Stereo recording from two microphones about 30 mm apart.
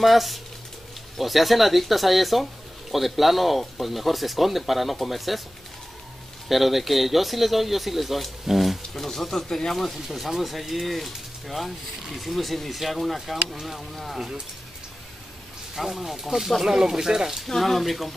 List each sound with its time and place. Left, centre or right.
0.0 s speech: centre
6.5 s speech: centre
8.9 s speech: centre
10.1 s speech: centre
15.7 s speech: centre
17.6 s speech: centre